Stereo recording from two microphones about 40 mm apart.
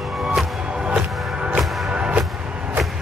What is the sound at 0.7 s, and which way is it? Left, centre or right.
Music, right.